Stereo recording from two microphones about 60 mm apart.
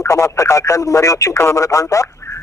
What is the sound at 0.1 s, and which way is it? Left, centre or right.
Speech, left.